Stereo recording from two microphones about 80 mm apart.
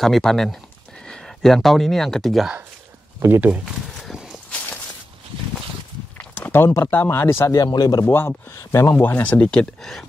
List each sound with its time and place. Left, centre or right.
0.0 s speech: centre
3.3 s speech: right
3.6 s a sound: centre
4.5 s walk: centre
6.1 s a sound: left
6.6 s speech: left
7.6 s speech: left
8.0 s speech: left
8.9 s speech: left; by 10.0 s centre